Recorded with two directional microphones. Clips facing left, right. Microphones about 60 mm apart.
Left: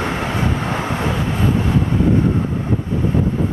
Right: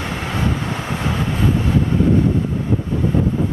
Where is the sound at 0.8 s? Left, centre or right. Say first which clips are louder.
Left 3 dB; left.